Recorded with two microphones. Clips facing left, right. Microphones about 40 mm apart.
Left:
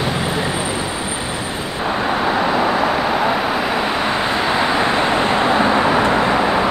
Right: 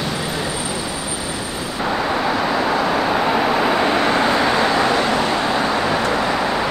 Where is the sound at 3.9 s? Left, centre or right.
Centre; by 6.5 s left.